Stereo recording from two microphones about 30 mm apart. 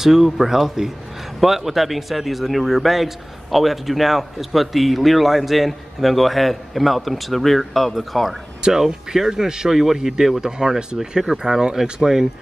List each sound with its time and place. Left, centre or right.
0.0 s speech: centre
8.8 s speech: centre